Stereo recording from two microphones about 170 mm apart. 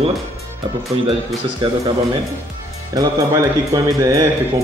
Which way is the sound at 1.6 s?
30° right (ahead or behind).